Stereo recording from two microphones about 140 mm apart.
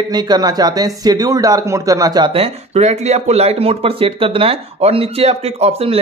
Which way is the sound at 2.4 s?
50° right (ahead or behind).